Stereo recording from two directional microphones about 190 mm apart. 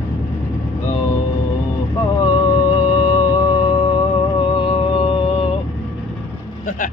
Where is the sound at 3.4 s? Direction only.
25° left (ahead or behind).